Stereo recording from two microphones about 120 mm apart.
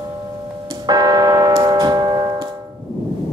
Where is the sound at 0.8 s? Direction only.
35° right (ahead or behind).